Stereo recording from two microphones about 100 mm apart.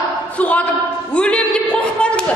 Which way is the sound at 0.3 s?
15° left (ahead or behind).